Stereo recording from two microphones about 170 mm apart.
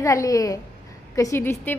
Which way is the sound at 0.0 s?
20° left (ahead or behind).